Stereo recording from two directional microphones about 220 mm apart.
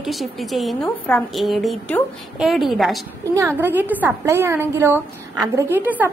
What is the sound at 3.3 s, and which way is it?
A woman's voice, 15° right (ahead or behind).